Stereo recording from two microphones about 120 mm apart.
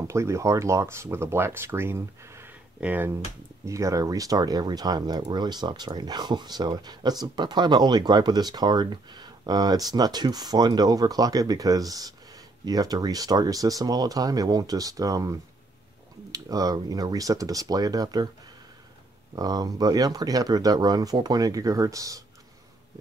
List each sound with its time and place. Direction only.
0.0 s speech: 25° right (ahead or behind)
3.6 s speech: 25° right (ahead or behind)
19.3 s speech: 30° right (ahead or behind)